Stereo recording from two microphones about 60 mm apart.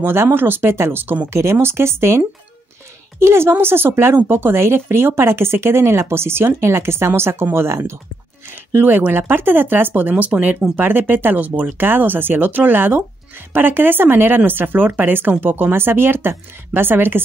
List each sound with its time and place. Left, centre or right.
0.0 s speech: right
1.3 s speech: right
4.2 s speech: right
8.7 s speech: right
10.8 s speech: right